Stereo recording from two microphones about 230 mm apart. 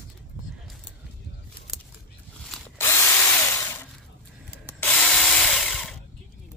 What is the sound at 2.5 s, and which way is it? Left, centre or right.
Drill, centre.